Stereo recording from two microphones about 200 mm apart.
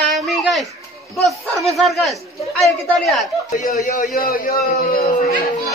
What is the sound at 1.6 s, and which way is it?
A woman's voice, centre (ahead or behind).